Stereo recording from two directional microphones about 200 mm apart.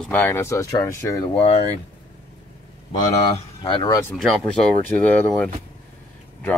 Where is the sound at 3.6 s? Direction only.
25° left (ahead or behind).